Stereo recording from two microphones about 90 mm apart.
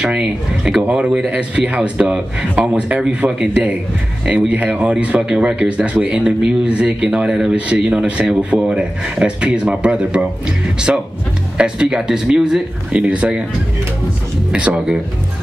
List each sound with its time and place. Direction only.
0.0 s speech: 10° right (ahead or behind)
14.5 s speech: 10° right (ahead or behind)